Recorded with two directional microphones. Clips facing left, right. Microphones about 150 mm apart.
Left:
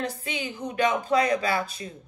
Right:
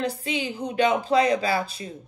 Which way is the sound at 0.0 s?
30° right (ahead or behind).